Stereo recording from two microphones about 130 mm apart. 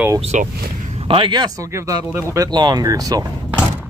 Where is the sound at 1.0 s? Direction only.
45° right (ahead or behind); by 2.4 s 20° right (ahead or behind).